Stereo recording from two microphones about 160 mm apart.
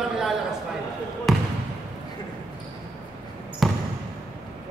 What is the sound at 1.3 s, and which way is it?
Trickle, centre (ahead or behind).